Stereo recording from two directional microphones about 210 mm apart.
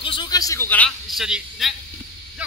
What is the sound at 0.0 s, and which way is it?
A man's voice, 20° left (ahead or behind).